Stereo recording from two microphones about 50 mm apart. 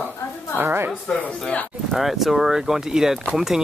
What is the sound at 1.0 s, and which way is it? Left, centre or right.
Speech, left.